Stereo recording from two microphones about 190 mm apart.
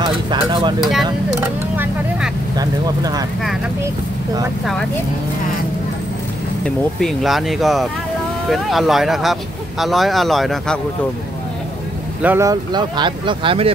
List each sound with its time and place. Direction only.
0.3 s speech: 25° right (ahead or behind)
1.8 s vehicle: 5° right (ahead or behind)
2.5 s speech: 20° right (ahead or behind)
6.6 s speech: centre (ahead or behind)
12.2 s speech: 10° right (ahead or behind); by 13.7 s 25° right (ahead or behind)